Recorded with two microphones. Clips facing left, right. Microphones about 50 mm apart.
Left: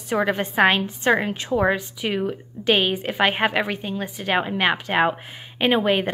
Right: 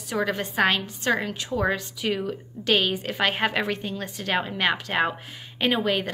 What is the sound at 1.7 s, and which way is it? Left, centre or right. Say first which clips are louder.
A woman's voice: left 3 dB; centre.